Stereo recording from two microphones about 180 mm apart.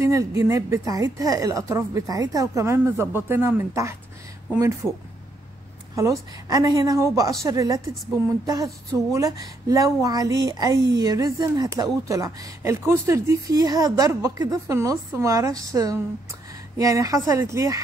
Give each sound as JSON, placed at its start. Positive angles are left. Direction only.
{"t": 0.0, "sound": "a woman's voice", "side_deg": -15}
{"t": 5.9, "sound": "a woman's voice", "side_deg": -20}